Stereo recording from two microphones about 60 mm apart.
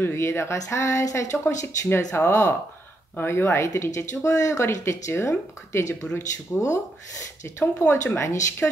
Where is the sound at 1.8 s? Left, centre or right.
Left.